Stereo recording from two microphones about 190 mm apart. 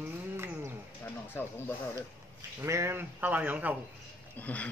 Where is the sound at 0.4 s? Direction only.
10° right (ahead or behind).